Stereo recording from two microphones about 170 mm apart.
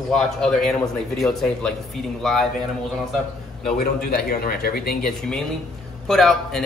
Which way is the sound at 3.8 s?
60° left (ahead or behind).